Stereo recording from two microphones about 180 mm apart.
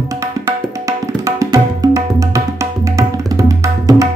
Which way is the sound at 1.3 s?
15° right (ahead or behind).